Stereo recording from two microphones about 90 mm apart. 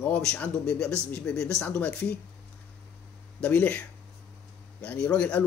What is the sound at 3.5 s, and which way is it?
Speech, 20° left (ahead or behind).